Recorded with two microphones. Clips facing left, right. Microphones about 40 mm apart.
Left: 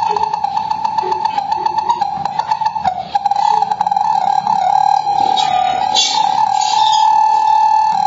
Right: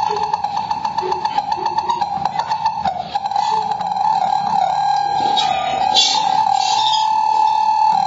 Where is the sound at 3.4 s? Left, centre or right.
Left.